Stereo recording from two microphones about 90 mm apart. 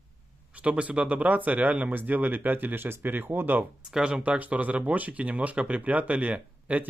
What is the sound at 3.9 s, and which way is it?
Speech, 10° right (ahead or behind).